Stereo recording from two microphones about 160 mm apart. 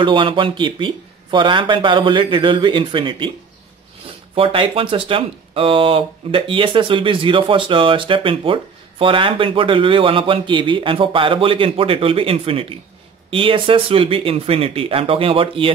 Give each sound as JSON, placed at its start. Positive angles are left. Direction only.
{"t": 0.0, "sound": "speech", "side_deg": -30}
{"t": 4.4, "sound": "speech", "side_deg": -35}